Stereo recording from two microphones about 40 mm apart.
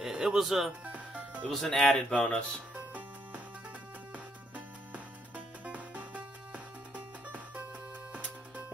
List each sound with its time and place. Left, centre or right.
0.0 s speech: centre
0.9 s music: right
1.5 s speech: centre
2.1 s speech: left
4.1 s music: right